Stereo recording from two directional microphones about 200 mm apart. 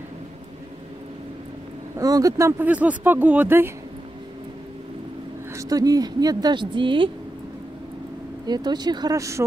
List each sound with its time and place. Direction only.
2.0 s speech: 15° right (ahead or behind)
5.5 s speech: 15° right (ahead or behind)
8.5 s speech: 20° right (ahead or behind)